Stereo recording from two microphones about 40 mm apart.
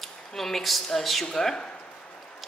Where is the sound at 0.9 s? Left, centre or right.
Centre.